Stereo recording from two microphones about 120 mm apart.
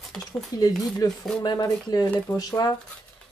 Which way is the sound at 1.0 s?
30° left (ahead or behind).